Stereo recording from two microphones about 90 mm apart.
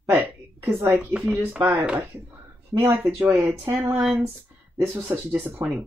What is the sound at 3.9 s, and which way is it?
Speech, 10° right (ahead or behind).